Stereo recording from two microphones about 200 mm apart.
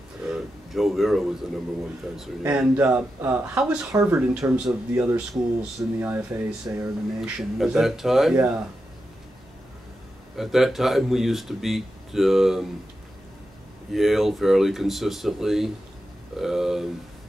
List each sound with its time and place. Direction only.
0.3 s a sound: centre (ahead or behind)
2.4 s speech: 10° right (ahead or behind)
10.3 s speech: centre (ahead or behind)
13.9 s speech: centre (ahead or behind)